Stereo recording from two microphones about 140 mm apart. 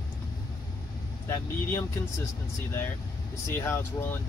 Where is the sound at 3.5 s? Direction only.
15° left (ahead or behind).